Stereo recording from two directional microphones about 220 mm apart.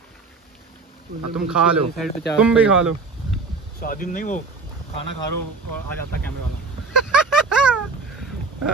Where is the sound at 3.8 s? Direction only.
40° left (ahead or behind).